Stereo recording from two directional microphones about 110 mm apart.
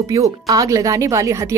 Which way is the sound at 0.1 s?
30° right (ahead or behind).